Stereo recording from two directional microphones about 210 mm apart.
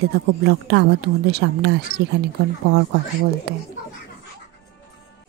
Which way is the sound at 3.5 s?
50° right (ahead or behind).